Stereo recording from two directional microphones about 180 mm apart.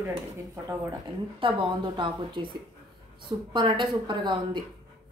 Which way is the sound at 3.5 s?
25° right (ahead or behind).